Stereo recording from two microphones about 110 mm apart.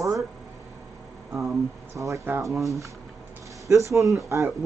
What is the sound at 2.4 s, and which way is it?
Speech, centre (ahead or behind).